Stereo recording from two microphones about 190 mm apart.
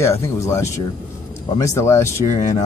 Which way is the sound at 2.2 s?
40° left (ahead or behind).